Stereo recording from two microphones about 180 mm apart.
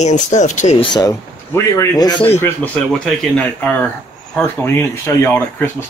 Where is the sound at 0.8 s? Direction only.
20° left (ahead or behind).